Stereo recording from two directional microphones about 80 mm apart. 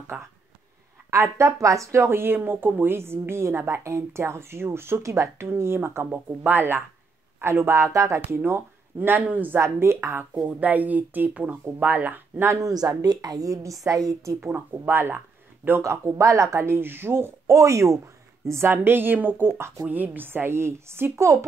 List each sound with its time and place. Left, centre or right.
0.1 s speech: centre
1.1 s speech: right
8.2 s speech: right
10.3 s speech: centre
12.7 s a woman's voice: right
14.4 s speech: right